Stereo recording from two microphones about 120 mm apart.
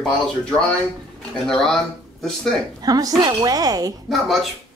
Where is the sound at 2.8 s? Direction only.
30° right (ahead or behind).